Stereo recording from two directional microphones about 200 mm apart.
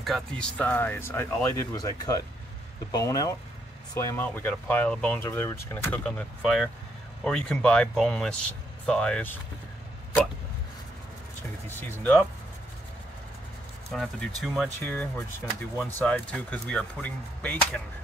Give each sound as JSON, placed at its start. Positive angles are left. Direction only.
{"t": 0.0, "sound": "speech", "side_deg": 0}
{"t": 12.0, "sound": "speech", "side_deg": 5}
{"t": 13.9, "sound": "speech", "side_deg": 0}